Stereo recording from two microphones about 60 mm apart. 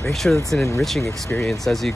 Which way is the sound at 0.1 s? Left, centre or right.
Centre.